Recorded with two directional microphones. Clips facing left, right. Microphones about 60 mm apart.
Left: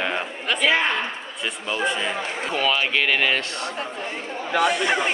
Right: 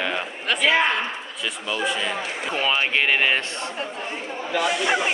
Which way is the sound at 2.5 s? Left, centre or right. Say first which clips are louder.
Even; right.